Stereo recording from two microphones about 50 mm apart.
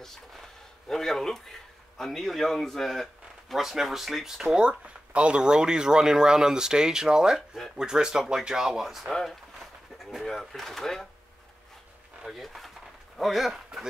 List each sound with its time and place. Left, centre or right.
0.8 s speech: centre
9.1 s speech: centre
12.3 s speech: centre